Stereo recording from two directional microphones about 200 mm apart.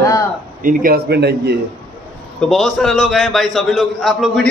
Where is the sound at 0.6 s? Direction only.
50° right (ahead or behind).